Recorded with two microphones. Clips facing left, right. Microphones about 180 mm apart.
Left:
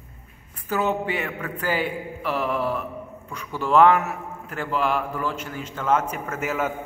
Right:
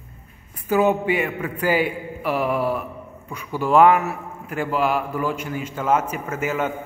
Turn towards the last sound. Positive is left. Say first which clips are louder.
# right 2 dB
turn(degrees=0)  # may be behind; listen again after turning